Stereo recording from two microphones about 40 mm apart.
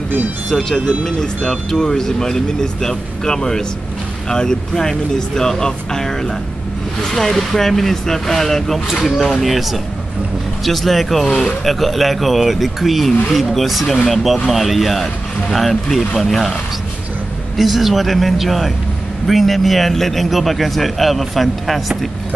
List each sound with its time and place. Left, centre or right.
0.5 s a man's voice: centre
17.6 s a man's voice: centre